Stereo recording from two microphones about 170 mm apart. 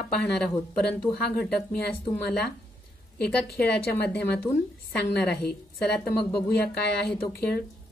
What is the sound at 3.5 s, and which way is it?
Speech, 70° left (ahead or behind).